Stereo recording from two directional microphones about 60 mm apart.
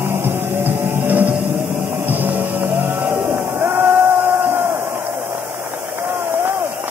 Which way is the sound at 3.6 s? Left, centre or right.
Right.